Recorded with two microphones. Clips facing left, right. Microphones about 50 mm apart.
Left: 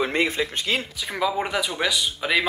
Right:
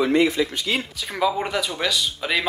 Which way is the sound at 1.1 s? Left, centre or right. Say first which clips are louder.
Right 2 dB; centre.